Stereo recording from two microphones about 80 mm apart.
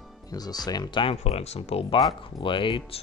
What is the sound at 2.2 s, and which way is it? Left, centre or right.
Speech, left.